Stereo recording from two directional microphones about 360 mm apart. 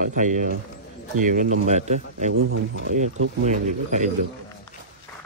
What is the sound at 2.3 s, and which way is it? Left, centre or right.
Speech, right.